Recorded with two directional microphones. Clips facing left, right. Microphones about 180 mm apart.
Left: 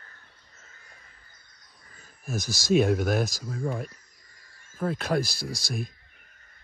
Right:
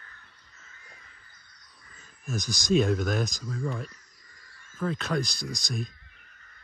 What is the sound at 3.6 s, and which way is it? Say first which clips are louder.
Speech: left 3 dB; 50° left (ahead or behind).